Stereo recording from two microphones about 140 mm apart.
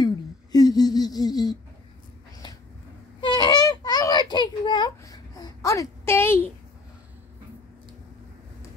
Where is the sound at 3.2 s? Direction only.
30° left (ahead or behind); by 6.5 s 15° left (ahead or behind).